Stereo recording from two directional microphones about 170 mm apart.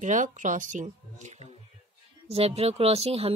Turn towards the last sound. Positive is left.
turn(degrees=-35)  # may be behind; listen again after turning